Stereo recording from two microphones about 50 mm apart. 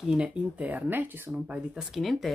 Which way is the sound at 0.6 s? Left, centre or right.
Right.